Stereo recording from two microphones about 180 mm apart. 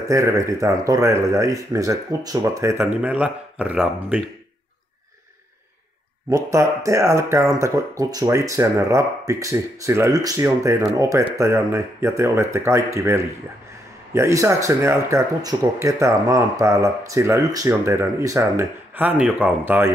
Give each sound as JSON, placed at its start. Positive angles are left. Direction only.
{"t": 0.1, "sound": "speech", "side_deg": -15}
{"t": 6.3, "sound": "speech", "side_deg": -15}